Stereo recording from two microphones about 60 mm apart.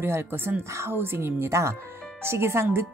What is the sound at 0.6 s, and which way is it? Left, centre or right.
Speech, right.